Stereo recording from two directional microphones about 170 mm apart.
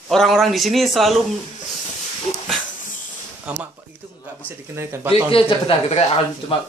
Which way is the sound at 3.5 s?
5° right (ahead or behind).